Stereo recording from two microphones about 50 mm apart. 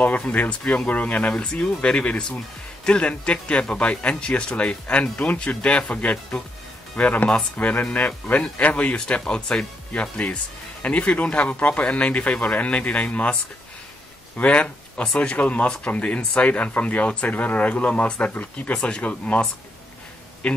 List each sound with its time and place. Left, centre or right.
0.3 s speech: left
18.8 s speech: centre
19.0 s speech: left
20.4 s speech: left